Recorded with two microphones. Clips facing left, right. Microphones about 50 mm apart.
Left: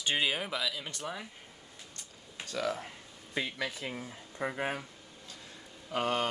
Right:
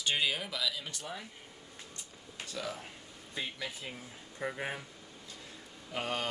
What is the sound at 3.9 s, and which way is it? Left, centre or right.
Speech, left.